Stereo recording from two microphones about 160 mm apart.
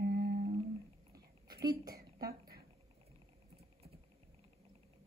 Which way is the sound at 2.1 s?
25° right (ahead or behind).